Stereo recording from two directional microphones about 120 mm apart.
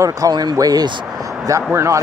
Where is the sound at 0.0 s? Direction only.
30° right (ahead or behind).